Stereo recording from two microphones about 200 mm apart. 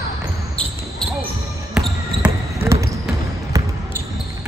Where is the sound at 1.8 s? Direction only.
Centre (ahead or behind).